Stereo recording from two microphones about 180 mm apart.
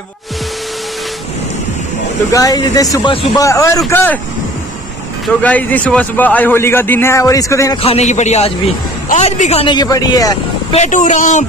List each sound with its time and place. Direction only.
2.3 s a man's voice: 20° left (ahead or behind)
5.2 s a man's voice: 10° left (ahead or behind)
7.8 s a man's voice: 35° left (ahead or behind); by 10.3 s 20° left (ahead or behind)
10.7 s speech: 40° left (ahead or behind)